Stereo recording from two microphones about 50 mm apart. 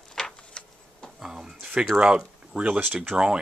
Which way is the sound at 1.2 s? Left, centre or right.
Centre.